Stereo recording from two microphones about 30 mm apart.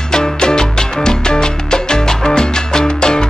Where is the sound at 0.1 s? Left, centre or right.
Left.